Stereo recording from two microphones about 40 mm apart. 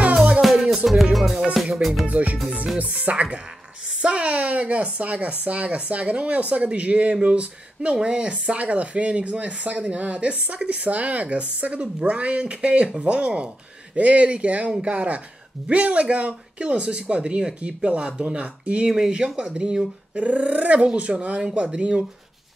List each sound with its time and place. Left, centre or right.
0.0 s music: right
0.4 s music: centre
2.0 s speech: right
18.9 s speech: centre
20.2 s speech: right